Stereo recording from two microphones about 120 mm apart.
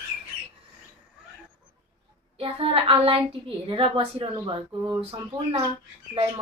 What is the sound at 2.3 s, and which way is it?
A woman's voice, 50° right (ahead or behind).